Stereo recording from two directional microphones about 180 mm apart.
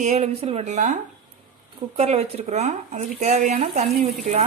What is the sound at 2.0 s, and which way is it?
Speech, 35° right (ahead or behind).